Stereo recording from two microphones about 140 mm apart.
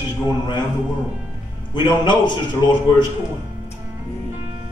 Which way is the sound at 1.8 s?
35° left (ahead or behind).